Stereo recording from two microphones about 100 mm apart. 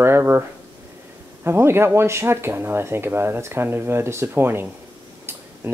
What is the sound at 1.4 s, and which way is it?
Speech, 25° right (ahead or behind).